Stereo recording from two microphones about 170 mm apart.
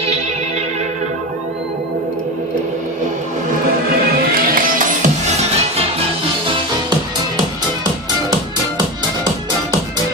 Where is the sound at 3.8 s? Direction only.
55° right (ahead or behind); by 5.6 s 40° right (ahead or behind).